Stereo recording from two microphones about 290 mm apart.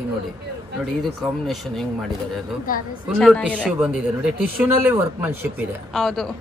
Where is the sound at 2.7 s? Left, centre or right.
Left.